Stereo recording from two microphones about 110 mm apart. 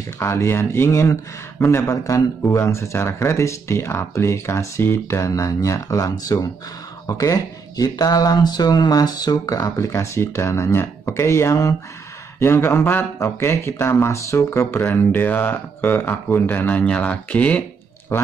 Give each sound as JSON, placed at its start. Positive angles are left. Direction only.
{"t": 0.2, "sound": "speech", "side_deg": 25}